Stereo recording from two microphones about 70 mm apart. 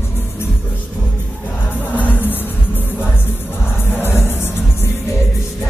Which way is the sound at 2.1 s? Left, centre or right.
Left.